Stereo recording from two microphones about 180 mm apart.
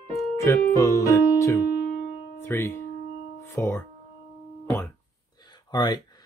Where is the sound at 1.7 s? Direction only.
60° left (ahead or behind).